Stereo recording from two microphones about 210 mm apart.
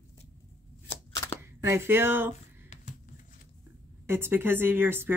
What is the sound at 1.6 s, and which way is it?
Speech, 15° right (ahead or behind).